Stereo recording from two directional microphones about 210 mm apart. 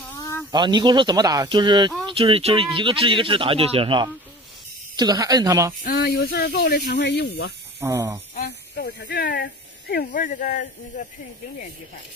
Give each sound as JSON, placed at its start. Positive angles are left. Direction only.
{"t": 0.0, "sound": "a sound", "side_deg": 10}
{"t": 0.5, "sound": "speech", "side_deg": -20}
{"t": 5.9, "sound": "speech", "side_deg": 45}
{"t": 7.8, "sound": "speech", "side_deg": -15}
{"t": 8.4, "sound": "speech", "side_deg": 50}